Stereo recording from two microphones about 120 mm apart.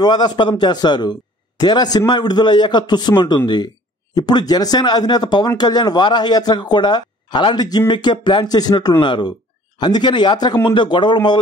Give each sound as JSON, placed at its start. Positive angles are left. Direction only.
{"t": 0.0, "sound": "speech", "side_deg": 35}